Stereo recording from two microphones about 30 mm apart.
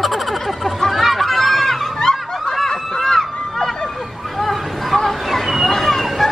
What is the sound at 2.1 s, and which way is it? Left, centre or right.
Snicker, left.